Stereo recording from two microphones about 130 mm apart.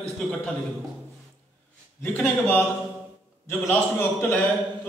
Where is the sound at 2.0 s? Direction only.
10° left (ahead or behind).